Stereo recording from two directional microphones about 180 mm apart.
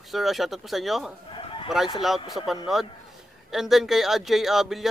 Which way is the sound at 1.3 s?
30° left (ahead or behind).